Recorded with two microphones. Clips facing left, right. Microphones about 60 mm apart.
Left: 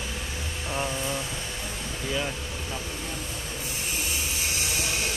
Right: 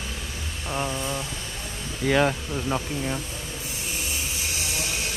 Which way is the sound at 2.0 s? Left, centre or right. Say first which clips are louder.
Right 10 dB; right.